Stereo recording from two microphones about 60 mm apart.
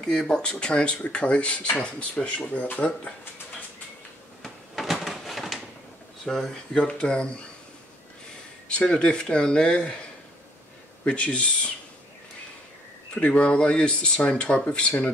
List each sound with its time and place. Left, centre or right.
0.0 s speech: centre; by 3.2 s left
4.4 s cupboard open or close: centre
5.0 s a sound: centre
6.2 s speech: centre
8.6 s speech: centre
11.1 s speech: centre
13.1 s speech: centre